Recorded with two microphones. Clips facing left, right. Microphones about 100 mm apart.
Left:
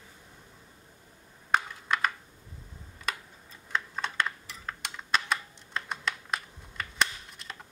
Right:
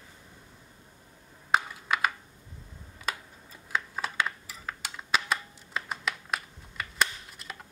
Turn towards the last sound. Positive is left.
turn(degrees=-5)  # may be behind; listen again after turning